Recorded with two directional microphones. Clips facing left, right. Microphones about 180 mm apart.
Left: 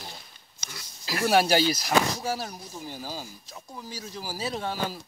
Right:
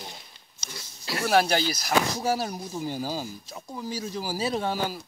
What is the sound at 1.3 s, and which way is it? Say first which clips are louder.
Speech: left 1 dB; 5° left (ahead or behind).